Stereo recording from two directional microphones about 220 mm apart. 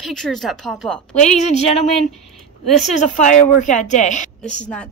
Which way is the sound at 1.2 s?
30° left (ahead or behind).